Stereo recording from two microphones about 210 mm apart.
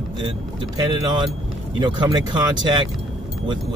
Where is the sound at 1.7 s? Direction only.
20° right (ahead or behind).